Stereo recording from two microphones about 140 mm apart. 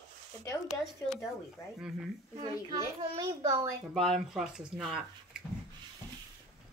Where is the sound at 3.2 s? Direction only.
25° right (ahead or behind).